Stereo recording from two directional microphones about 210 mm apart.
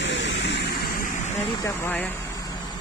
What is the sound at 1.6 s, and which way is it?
Speech, 10° left (ahead or behind).